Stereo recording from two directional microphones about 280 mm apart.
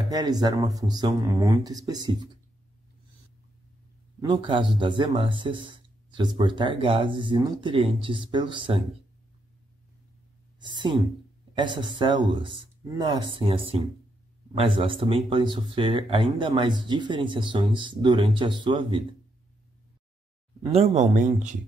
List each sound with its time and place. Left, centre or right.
0.1 s speech: centre
4.2 s speech: centre
10.6 s a woman's voice: centre
20.9 s speech: right